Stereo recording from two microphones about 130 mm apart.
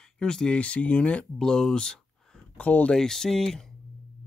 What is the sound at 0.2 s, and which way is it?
Speech, 5° left (ahead or behind).